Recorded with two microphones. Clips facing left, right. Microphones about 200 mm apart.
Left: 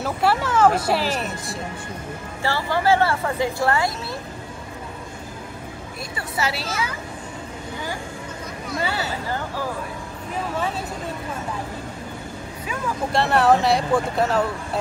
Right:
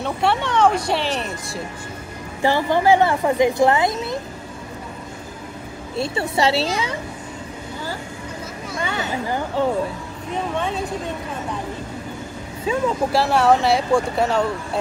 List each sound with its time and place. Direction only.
0.0 s speech: 5° left (ahead or behind)
2.4 s speech: 20° right (ahead or behind)
5.9 s a woman's voice: 25° right (ahead or behind)
8.8 s a sound: 35° left (ahead or behind)
9.1 s speech: 15° right (ahead or behind)
10.5 s speech: 5° left (ahead or behind)
13.1 s speech: centre (ahead or behind)